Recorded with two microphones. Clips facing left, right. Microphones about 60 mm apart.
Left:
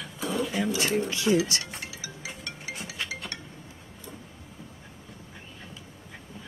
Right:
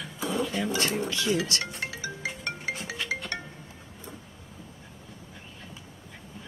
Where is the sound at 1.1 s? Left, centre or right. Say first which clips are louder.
Left 5 dB; left.